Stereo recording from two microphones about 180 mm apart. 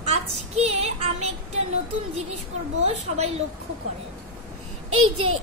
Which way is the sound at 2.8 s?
35° right (ahead or behind).